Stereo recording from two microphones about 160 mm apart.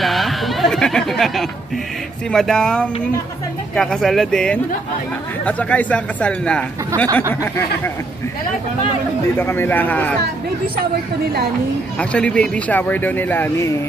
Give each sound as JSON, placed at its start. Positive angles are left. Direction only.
{"t": 0.0, "sound": "a sound", "side_deg": 0}
{"t": 2.3, "sound": "speech", "side_deg": 5}
{"t": 9.4, "sound": "speech", "side_deg": 15}
{"t": 12.0, "sound": "speech", "side_deg": 5}